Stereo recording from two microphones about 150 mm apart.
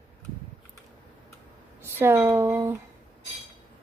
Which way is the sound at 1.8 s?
15° right (ahead or behind).